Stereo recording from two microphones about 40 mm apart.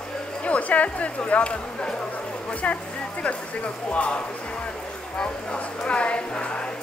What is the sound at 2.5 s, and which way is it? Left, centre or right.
Speech, left.